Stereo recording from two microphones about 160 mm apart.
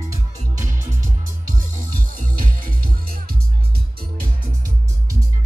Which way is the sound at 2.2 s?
60° right (ahead or behind).